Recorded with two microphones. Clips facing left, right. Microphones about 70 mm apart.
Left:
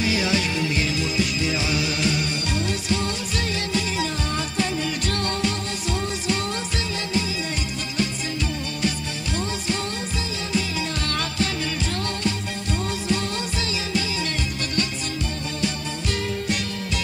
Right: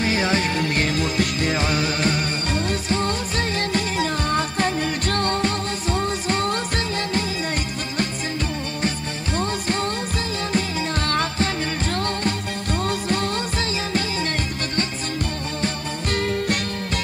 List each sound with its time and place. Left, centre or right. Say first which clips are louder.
0.0 s music: right 2 dB; right
9.4 s music: right 4 dB; right
15.6 s music: even; right